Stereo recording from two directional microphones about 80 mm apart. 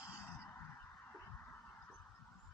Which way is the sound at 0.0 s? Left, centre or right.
Left.